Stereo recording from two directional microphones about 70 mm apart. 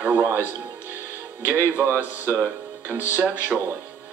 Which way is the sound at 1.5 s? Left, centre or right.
Right.